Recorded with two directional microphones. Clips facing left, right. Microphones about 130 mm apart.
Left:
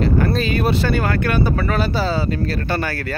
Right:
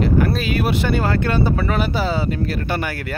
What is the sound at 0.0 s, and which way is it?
Speech, 10° right (ahead or behind).